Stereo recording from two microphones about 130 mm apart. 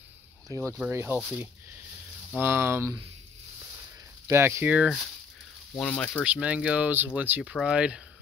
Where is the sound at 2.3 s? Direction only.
15° right (ahead or behind).